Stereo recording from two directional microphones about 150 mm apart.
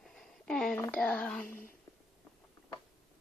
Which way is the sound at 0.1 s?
5° left (ahead or behind).